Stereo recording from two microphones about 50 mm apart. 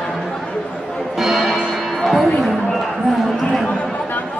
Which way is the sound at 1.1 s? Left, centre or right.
Centre.